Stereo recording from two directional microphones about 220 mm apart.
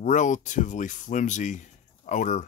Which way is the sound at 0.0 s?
35° left (ahead or behind).